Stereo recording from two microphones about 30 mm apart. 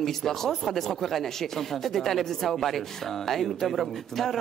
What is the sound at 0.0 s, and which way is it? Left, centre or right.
Speech, centre.